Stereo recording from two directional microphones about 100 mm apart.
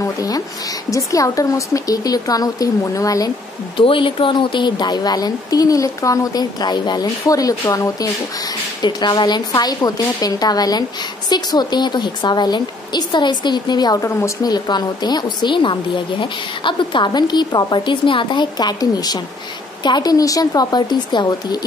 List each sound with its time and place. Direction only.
0.0 s a sound: 35° left (ahead or behind)
0.8 s speech: 35° left (ahead or behind)
3.7 s speech: 60° left (ahead or behind); by 8.1 s 35° left (ahead or behind)
8.8 s a woman's voice: 45° left (ahead or behind)
14.0 s a woman's voice: 30° left (ahead or behind)
14.5 s a woman's voice: 45° left (ahead or behind)